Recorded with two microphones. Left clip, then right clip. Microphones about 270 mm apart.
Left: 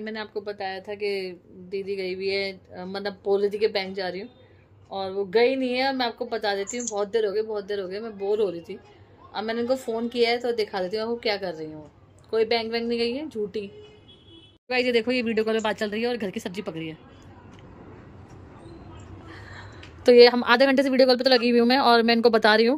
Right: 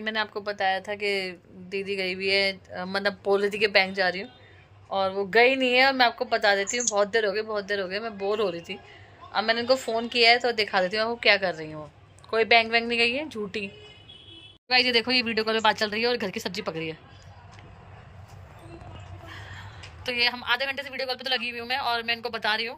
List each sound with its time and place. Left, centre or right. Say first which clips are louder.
0.0 s a woman's voice: right 4 dB; centre
14.7 s speech: right 1 dB; centre
19.2 s a woman's voice: right 1 dB; left